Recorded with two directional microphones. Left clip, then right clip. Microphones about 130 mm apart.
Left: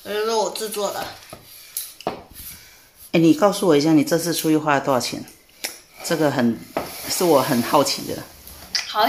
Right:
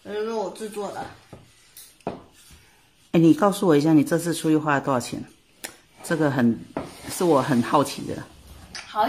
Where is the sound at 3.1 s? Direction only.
15° right (ahead or behind).